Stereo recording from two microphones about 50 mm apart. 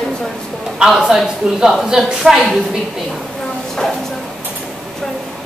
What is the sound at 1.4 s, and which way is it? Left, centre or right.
Speech, centre.